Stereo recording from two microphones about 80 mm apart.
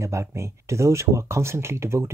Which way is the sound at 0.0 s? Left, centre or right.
Right.